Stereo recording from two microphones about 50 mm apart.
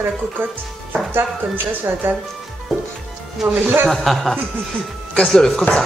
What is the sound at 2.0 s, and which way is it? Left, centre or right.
Speech, right.